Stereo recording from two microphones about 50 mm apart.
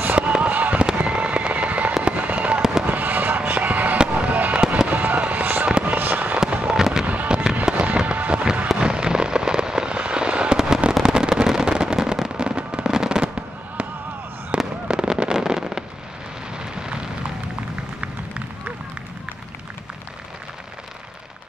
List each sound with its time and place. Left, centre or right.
0.0 s fireworks: right
6.7 s fireworks: centre
7.1 s fireworks: right
14.5 s fireworks: right
16.5 s rain: centre